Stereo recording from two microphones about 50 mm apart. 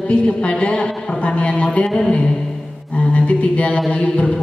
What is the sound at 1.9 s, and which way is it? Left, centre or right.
Speech, centre.